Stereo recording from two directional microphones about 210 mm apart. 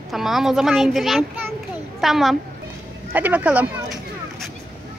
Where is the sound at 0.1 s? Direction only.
Centre (ahead or behind).